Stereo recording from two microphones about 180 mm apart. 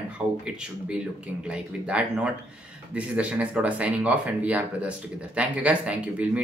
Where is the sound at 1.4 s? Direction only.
5° right (ahead or behind).